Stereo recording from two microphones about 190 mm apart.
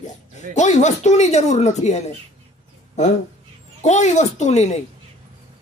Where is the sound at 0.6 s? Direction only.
40° left (ahead or behind).